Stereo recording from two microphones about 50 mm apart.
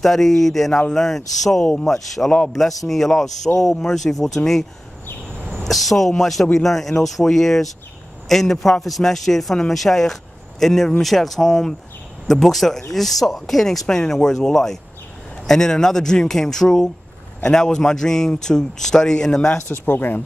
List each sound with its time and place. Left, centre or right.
0.0 s speech: centre
5.5 s speech: centre
19.7 s speech: left